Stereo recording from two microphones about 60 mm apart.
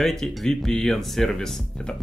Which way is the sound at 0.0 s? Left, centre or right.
Centre.